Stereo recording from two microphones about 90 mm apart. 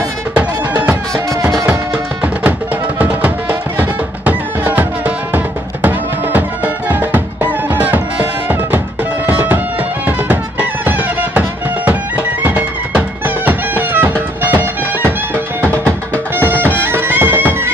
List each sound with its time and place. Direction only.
0.3 s music: 15° right (ahead or behind)
3.0 s music: 20° right (ahead or behind)
16.4 s bagpipes: 25° right (ahead or behind)